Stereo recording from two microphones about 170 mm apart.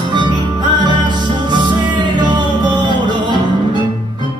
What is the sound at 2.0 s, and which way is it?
Music, 25° right (ahead or behind).